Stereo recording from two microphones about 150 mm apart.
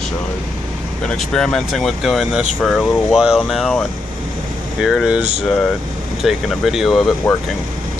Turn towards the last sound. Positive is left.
turn(degrees=0)  # may be behind; listen again after turning